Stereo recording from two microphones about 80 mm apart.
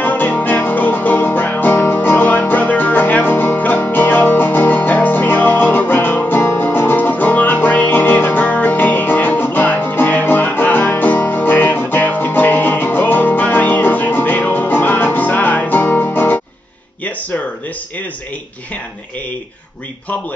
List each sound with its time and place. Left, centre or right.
0.0 s music: left